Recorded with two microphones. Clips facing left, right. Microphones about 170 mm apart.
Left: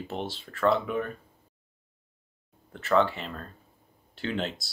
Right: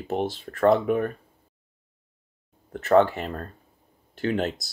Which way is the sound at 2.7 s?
50° right (ahead or behind).